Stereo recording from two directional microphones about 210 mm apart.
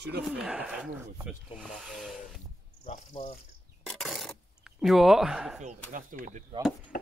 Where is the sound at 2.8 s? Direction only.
30° left (ahead or behind).